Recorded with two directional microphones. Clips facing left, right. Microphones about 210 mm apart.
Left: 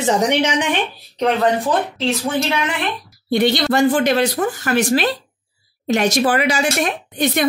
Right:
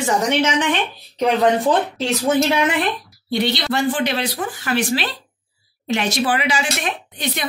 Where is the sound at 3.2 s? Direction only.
50° left (ahead or behind).